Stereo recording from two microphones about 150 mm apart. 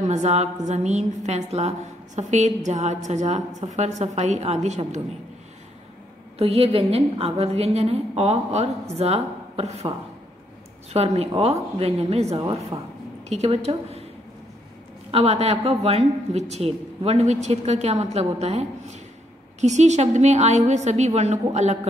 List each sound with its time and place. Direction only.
0.1 s a woman's voice: 50° right (ahead or behind)
6.3 s a woman's voice: 40° right (ahead or behind)
12.7 s speech: 25° right (ahead or behind)
13.3 s a woman's voice: 45° right (ahead or behind)
15.0 s a woman's voice: 40° right (ahead or behind)